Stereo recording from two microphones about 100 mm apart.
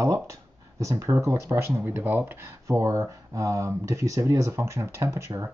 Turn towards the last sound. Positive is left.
turn(degrees=-25)  # may be behind; listen again after turning